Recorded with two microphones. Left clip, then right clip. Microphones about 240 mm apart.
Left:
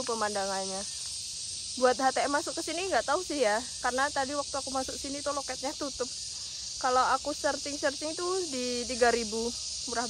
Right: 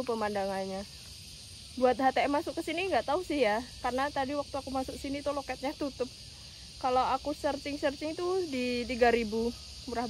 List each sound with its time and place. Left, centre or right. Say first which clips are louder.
0.0 s speech: left 1 dB; centre
9.3 s speech: left 1 dB; centre